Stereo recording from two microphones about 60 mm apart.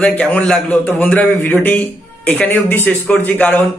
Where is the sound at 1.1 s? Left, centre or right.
Left.